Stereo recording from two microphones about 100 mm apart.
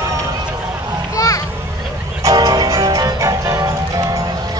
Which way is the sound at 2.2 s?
40° right (ahead or behind).